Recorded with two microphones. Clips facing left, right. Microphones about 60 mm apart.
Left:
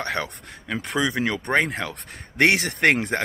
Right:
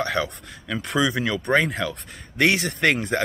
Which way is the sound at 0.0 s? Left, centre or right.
Left.